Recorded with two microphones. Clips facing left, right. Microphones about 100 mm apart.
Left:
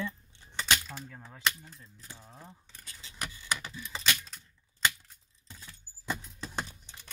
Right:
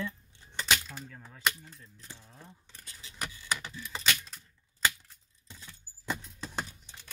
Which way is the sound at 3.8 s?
Centre (ahead or behind).